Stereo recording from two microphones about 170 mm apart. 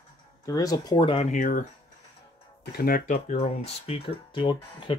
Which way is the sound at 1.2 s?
50° left (ahead or behind).